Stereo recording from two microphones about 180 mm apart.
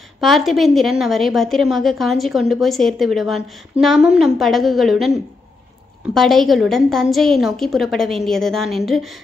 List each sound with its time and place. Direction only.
0.2 s a woman's voice: centre (ahead or behind)